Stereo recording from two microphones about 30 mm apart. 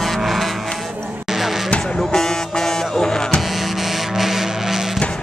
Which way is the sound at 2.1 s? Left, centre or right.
Centre.